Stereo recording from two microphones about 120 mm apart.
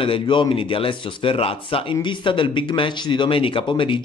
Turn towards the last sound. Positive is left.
turn(degrees=45)  # may be behind; listen again after turning